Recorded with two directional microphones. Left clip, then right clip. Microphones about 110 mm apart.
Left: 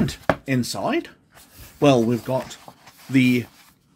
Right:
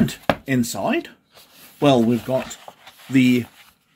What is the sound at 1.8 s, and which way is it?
Speech, 40° left (ahead or behind).